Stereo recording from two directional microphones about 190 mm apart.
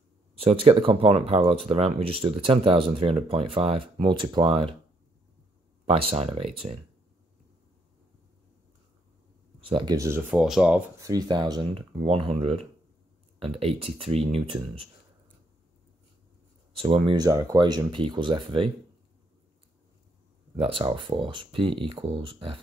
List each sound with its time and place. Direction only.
0.4 s speech: 30° right (ahead or behind)
5.9 s speech: 30° right (ahead or behind)
9.6 s speech: 25° right (ahead or behind)
10.4 s speech: 5° right (ahead or behind)
11.0 s speech: 20° right (ahead or behind)
16.7 s speech: 30° right (ahead or behind)
20.5 s speech: 30° right (ahead or behind)